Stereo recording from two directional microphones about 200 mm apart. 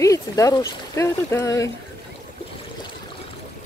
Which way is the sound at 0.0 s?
15° left (ahead or behind).